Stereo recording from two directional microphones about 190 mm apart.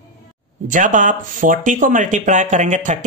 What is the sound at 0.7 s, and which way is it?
Speech, 40° right (ahead or behind).